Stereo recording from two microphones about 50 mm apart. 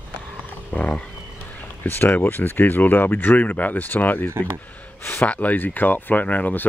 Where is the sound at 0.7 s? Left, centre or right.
Left.